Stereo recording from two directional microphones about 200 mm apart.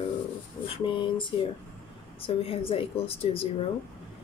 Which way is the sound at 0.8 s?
25° left (ahead or behind).